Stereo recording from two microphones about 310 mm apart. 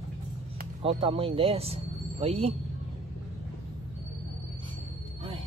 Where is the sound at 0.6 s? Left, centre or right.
Centre.